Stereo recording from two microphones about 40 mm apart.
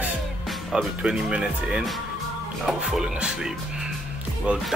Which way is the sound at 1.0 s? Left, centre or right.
Right.